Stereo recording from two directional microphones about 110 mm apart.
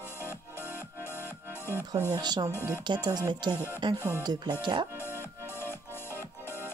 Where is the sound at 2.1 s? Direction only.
40° right (ahead or behind).